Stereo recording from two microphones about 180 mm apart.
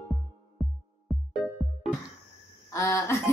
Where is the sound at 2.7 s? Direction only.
15° left (ahead or behind).